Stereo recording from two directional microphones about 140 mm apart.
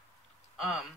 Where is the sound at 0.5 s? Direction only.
Centre (ahead or behind).